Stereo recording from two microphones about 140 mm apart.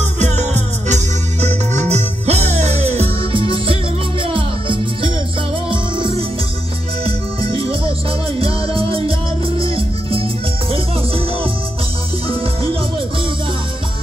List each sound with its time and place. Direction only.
0.2 s music: 55° right (ahead or behind)